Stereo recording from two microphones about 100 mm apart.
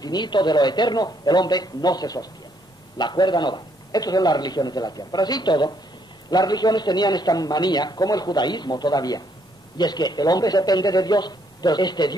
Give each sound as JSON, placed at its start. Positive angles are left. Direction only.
{"t": 0.0, "sound": "a man's voice", "side_deg": 45}